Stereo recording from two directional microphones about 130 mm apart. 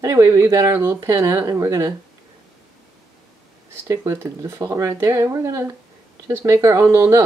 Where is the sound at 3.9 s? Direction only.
20° right (ahead or behind).